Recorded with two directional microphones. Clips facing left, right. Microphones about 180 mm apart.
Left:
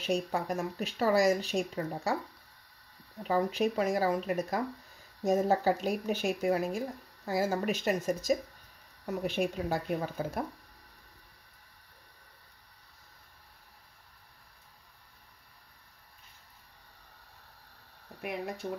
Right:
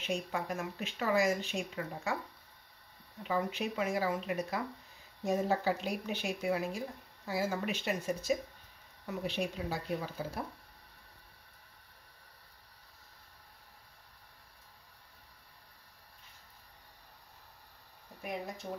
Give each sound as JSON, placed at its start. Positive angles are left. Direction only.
{"t": 0.0, "sound": "speech", "side_deg": 40}
{"t": 3.3, "sound": "speech", "side_deg": 40}